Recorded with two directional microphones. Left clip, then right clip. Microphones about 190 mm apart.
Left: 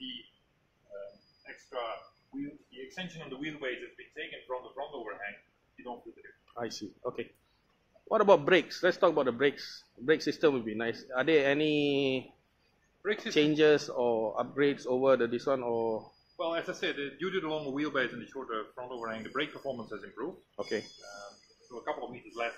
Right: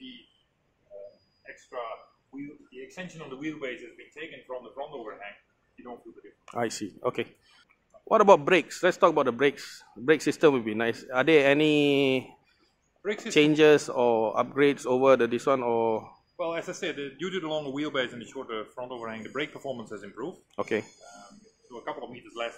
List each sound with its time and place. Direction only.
6.8 s speech: 45° right (ahead or behind)
13.0 s speech: 55° right (ahead or behind)
13.4 s speech: 40° right (ahead or behind)
21.8 s speech: 30° right (ahead or behind)